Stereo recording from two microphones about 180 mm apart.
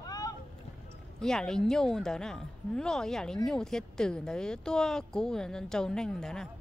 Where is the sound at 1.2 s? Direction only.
5° left (ahead or behind).